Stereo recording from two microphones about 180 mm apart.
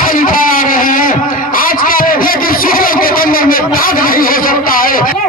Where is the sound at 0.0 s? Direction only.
50° left (ahead or behind).